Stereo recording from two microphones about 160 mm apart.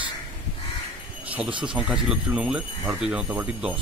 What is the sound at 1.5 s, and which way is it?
Speech, 30° right (ahead or behind).